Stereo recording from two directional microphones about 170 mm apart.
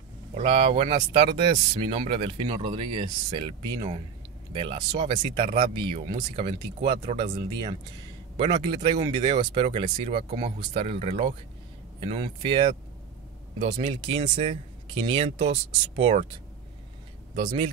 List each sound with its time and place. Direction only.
0.4 s speech: 30° right (ahead or behind)
8.4 s speech: 25° right (ahead or behind); by 16.3 s 45° right (ahead or behind)